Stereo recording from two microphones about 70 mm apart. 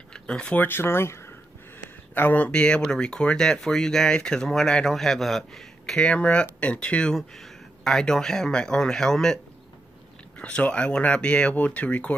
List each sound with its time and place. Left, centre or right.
0.1 s speech: centre
0.7 s speech: left
2.1 s speech: left; by 6.0 s centre
6.0 s speech: centre
7.2 s speech: centre; by 12.1 s left